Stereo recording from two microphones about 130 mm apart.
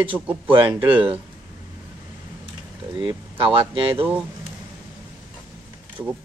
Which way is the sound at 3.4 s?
40° right (ahead or behind).